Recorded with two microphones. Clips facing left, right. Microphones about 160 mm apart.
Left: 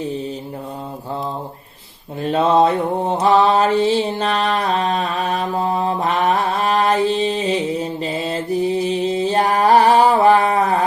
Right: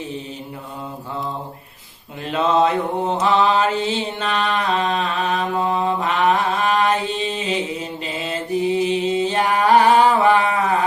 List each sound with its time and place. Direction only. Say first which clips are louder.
2.2 s mantra: left 3 dB; 35° left (ahead or behind)